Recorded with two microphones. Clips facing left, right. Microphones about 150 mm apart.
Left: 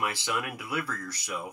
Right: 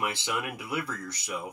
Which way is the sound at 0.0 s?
20° right (ahead or behind).